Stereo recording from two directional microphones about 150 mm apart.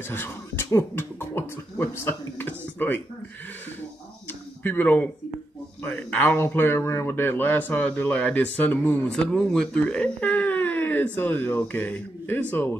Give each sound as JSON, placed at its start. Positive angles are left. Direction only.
{"t": 0.1, "sound": "speech", "side_deg": 15}
{"t": 4.3, "sound": "a sound", "side_deg": 10}
{"t": 5.9, "sound": "speech", "side_deg": 10}